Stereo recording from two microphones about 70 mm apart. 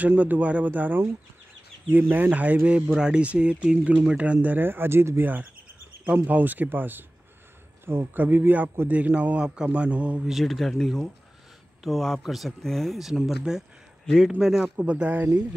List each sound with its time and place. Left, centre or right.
0.0 s a man's voice: right
8.1 s a man's voice: right
10.2 s a man's voice: centre
14.9 s a man's voice: centre